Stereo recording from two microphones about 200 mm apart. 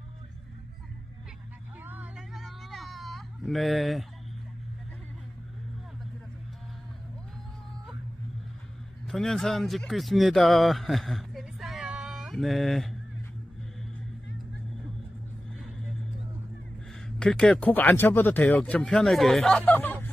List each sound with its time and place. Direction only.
1.9 s a sound: 5° right (ahead or behind)
9.0 s speech: 5° left (ahead or behind)
17.2 s speech: 5° left (ahead or behind)